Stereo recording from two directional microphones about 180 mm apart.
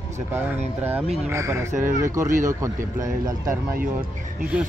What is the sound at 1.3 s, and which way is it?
Speech, 15° right (ahead or behind).